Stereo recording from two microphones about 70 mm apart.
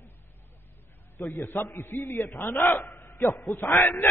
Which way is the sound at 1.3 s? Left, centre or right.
Left.